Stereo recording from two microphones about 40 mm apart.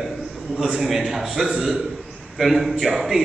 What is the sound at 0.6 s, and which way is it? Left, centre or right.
A man's voice, centre.